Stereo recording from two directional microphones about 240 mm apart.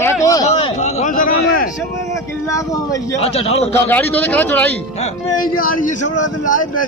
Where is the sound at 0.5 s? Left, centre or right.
Left.